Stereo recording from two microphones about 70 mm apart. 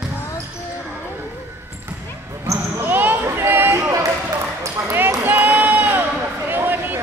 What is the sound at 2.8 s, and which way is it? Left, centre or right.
Basketball bounce, right.